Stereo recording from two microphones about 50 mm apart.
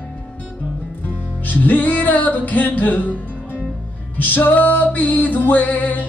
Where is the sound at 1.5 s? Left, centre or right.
Left.